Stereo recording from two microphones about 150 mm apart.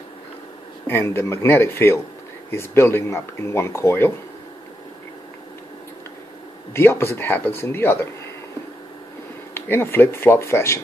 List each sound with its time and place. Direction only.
0.8 s speech: 15° left (ahead or behind)
6.7 s speech: 15° left (ahead or behind)
9.5 s speech: 15° left (ahead or behind)